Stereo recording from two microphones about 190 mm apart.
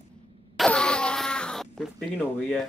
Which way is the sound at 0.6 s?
5° left (ahead or behind).